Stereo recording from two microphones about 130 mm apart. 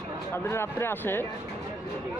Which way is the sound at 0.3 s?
20° left (ahead or behind).